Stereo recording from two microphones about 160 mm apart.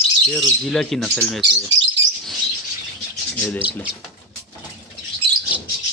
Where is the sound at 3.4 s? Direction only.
10° left (ahead or behind).